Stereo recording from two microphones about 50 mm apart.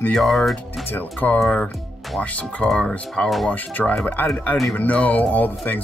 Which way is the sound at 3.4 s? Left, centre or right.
Left.